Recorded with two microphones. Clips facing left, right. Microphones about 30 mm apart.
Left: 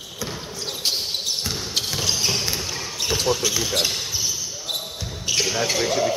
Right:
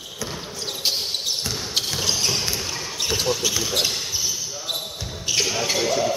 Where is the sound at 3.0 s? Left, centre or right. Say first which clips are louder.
Left 1 dB; centre.